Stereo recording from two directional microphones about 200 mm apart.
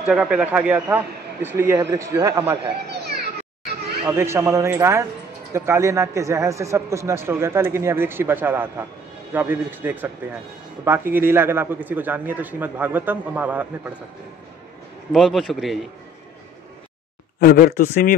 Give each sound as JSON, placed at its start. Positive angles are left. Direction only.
{"t": 0.0, "sound": "speech", "side_deg": -5}
{"t": 4.0, "sound": "speech", "side_deg": -10}
{"t": 15.1, "sound": "a man's voice", "side_deg": 0}
{"t": 17.4, "sound": "speech", "side_deg": 50}